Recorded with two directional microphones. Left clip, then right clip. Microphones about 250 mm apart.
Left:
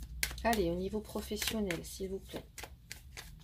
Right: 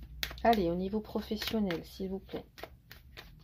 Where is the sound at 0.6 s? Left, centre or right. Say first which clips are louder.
Right 2 dB; right.